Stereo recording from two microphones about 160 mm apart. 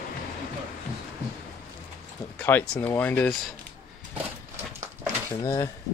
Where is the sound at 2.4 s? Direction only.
10° left (ahead or behind).